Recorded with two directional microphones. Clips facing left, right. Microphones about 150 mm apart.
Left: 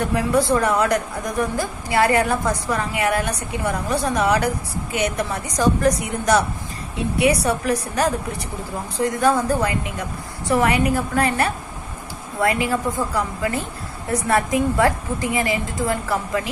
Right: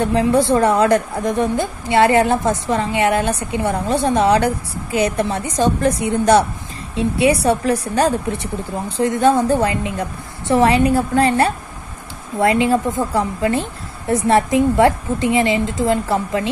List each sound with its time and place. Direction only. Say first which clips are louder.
0.0 s a woman's voice: right 4 dB; 30° right (ahead or behind)